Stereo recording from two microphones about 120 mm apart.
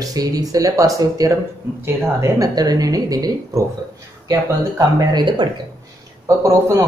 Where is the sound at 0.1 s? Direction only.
30° right (ahead or behind).